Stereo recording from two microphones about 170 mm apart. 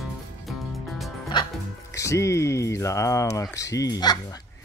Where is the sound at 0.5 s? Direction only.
Centre (ahead or behind).